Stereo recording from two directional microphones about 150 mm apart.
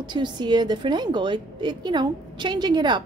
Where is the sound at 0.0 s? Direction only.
30° right (ahead or behind).